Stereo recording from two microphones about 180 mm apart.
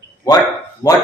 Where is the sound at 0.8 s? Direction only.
20° left (ahead or behind).